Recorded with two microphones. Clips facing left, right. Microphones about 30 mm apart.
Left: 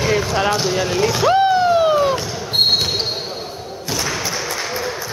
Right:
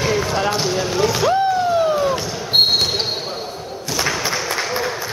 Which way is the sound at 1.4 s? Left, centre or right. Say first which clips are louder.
Left 3 dB; left.